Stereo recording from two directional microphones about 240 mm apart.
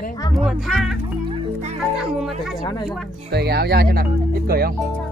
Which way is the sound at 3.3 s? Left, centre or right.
Right.